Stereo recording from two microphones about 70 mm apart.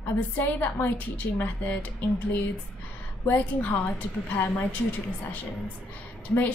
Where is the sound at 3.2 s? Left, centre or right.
Left.